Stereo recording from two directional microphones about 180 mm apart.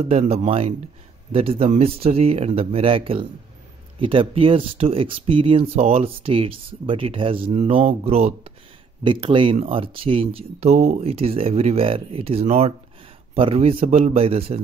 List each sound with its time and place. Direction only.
0.1 s speech: 35° right (ahead or behind)